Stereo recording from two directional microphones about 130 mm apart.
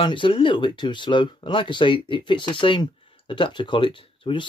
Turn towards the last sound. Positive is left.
turn(degrees=40)  # may be behind; listen again after turning